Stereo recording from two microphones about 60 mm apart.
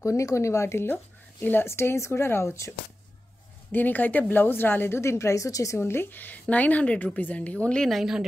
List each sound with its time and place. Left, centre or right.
0.0 s speech: left
1.4 s a woman's voice: left
1.7 s speech: left
3.7 s a woman's voice: left
5.8 s a woman's voice: left; by 7.8 s centre
8.0 s a woman's voice: centre